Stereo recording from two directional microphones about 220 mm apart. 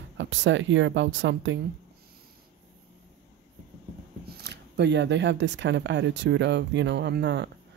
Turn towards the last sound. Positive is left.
turn(degrees=-50)  # may be behind; listen again after turning